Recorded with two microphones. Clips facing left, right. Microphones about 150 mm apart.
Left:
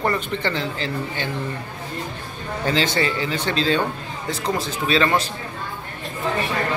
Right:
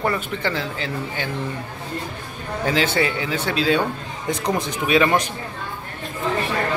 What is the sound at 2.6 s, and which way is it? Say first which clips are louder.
Speech: right 1 dB; 5° right (ahead or behind).